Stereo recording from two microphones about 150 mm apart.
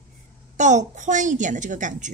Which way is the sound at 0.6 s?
55° right (ahead or behind).